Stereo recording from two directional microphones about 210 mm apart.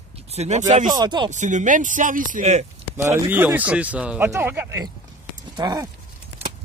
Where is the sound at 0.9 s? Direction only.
20° right (ahead or behind).